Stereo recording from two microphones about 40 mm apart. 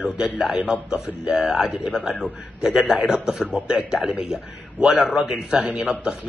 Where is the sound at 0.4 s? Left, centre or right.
Centre.